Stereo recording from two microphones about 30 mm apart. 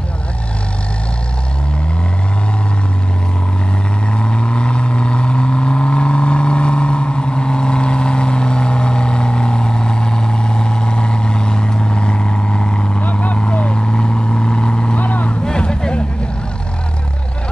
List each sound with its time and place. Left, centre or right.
4.2 s vehicle: left
13.1 s vehicle: left
13.5 s vehicle: left
15.0 s vehicle: left
15.4 s music: left